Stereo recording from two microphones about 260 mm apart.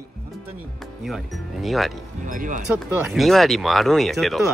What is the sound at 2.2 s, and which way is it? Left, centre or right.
Speech, right.